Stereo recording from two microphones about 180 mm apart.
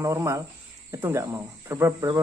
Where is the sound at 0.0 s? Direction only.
15° right (ahead or behind).